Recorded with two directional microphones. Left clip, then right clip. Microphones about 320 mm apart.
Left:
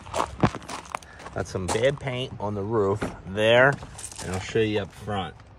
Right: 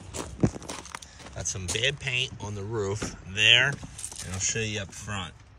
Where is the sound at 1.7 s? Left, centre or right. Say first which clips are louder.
Left 2 dB; centre.